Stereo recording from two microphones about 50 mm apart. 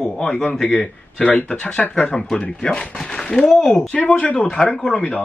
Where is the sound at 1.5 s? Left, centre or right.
Left.